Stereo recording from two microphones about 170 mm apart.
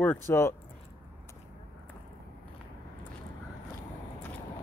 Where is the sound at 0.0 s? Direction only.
15° left (ahead or behind).